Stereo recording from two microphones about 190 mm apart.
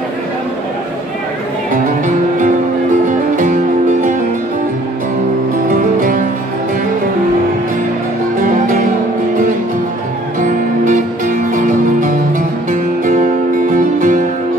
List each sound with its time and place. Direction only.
3.1 s music: 45° right (ahead or behind)
5.7 s music: 45° right (ahead or behind)
8.4 s music: 45° right (ahead or behind)
10.4 s music: 45° right (ahead or behind)
13.7 s music: 45° right (ahead or behind)